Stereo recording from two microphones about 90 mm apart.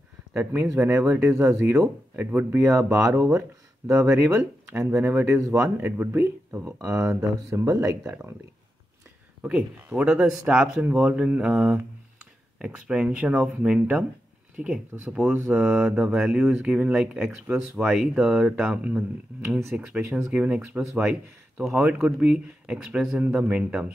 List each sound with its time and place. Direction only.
0.7 s speech: 25° right (ahead or behind)
1.3 s speech: 35° right (ahead or behind)
4.7 s speech: 20° right (ahead or behind); by 8.0 s 40° right (ahead or behind)
9.4 s speech: 15° right (ahead or behind)